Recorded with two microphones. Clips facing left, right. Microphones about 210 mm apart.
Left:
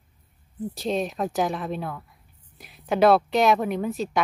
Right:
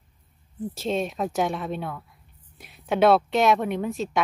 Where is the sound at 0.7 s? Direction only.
Centre (ahead or behind).